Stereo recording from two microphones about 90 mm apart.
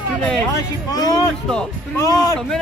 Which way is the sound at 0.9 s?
40° left (ahead or behind).